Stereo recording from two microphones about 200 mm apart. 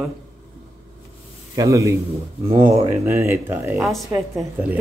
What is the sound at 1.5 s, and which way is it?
A woman's voice, 15° right (ahead or behind).